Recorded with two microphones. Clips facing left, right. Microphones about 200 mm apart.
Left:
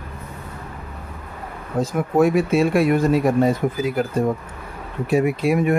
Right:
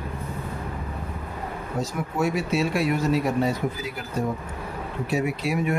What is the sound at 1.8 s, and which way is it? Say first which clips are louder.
Speech: left 9 dB; 55° left (ahead or behind).